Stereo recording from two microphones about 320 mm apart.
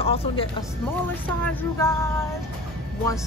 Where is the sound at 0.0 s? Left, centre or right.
Centre.